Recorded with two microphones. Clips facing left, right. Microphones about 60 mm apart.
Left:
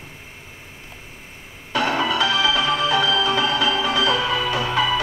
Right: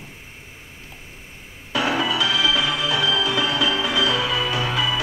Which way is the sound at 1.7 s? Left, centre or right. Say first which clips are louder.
Left 1 dB; left.